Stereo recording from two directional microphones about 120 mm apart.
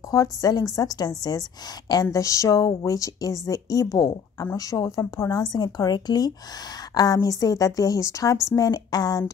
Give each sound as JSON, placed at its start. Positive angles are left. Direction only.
{"t": 0.1, "sound": "speech", "side_deg": 30}